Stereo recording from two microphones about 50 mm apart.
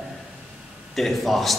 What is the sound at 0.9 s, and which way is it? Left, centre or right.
Speech, centre.